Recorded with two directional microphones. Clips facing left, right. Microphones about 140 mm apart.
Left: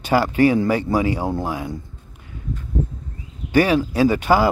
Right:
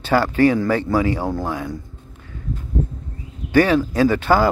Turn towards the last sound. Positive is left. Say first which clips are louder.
# even
turn(degrees=15)  # may be behind; listen again after turning